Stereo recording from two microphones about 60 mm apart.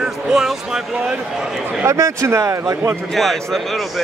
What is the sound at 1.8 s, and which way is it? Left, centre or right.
Speech, right.